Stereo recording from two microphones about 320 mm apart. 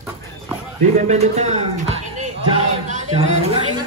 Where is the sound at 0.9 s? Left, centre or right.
Right.